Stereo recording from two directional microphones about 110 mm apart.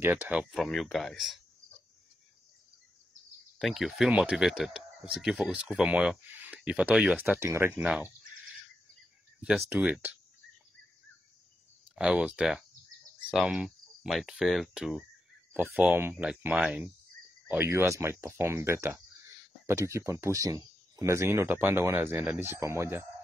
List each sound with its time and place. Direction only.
0.0 s speech: 20° right (ahead or behind)
0.3 s cricket: 5° right (ahead or behind)
3.5 s cricket: centre (ahead or behind)
4.1 s speech: 10° right (ahead or behind)
7.2 s speech: 25° right (ahead or behind)
7.8 s speech: 10° right (ahead or behind)
9.4 s speech: 5° right (ahead or behind)
11.9 s speech: 10° right (ahead or behind)
13.3 s cricket: 5° right (ahead or behind)
15.5 s speech: 10° right (ahead or behind)
16.0 s speech: 20° right (ahead or behind)
16.3 s speech: 10° right (ahead or behind); by 23.0 s 25° right (ahead or behind)